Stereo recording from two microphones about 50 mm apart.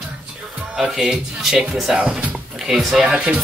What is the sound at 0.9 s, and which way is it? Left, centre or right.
Speech, centre.